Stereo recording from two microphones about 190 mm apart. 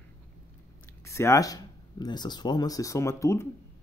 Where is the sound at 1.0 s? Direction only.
15° left (ahead or behind).